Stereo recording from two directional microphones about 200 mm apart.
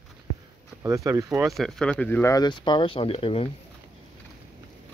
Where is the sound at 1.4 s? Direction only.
Centre (ahead or behind); by 3.5 s 30° left (ahead or behind).